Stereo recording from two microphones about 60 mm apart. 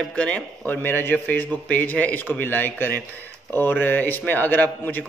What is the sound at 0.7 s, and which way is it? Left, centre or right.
A man's voice, left.